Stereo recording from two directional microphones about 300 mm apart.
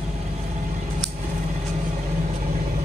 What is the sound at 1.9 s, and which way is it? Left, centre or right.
Vehicle, right.